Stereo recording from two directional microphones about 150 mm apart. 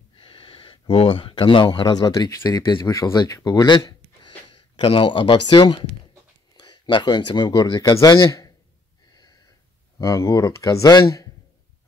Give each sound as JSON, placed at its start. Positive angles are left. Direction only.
{"t": 0.2, "sound": "speech", "side_deg": 35}
{"t": 9.9, "sound": "speech", "side_deg": 25}